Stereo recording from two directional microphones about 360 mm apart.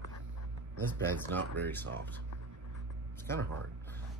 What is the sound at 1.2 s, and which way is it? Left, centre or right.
Speech, centre.